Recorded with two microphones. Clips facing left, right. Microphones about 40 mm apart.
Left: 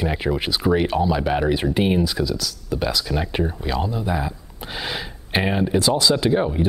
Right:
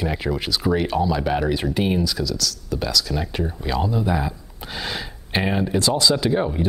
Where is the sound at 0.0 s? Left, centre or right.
Centre.